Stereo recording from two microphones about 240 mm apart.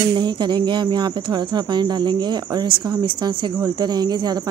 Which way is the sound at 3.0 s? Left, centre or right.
Centre.